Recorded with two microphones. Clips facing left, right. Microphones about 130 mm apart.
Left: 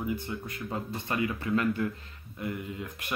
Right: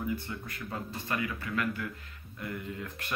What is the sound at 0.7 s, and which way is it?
A man's voice, 25° left (ahead or behind).